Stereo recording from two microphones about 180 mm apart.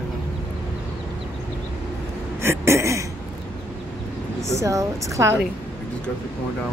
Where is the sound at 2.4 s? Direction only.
15° right (ahead or behind).